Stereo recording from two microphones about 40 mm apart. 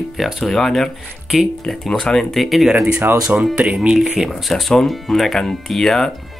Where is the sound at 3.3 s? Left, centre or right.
Right.